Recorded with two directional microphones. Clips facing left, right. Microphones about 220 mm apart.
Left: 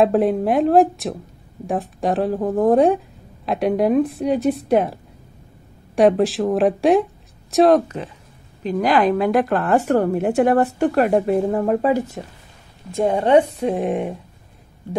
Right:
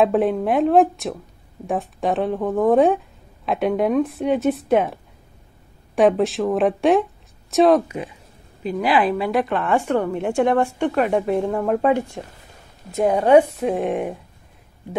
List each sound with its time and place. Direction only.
0.0 s speech: centre (ahead or behind)
5.9 s speech: centre (ahead or behind)
9.7 s a woman's voice: 40° left (ahead or behind)
10.1 s speech: 5° left (ahead or behind)